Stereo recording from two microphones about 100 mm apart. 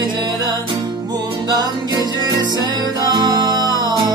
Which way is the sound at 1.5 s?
40° right (ahead or behind).